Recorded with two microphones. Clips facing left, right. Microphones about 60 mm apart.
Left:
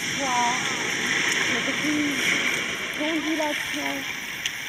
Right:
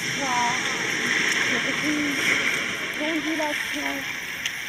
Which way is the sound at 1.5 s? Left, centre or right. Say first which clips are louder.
Right 1 dB; right.